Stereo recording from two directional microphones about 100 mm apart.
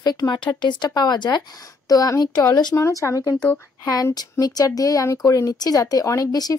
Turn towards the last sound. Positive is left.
turn(degrees=40)  # may be behind; listen again after turning